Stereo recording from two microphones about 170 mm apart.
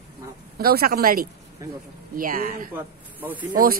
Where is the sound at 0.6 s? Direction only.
65° right (ahead or behind).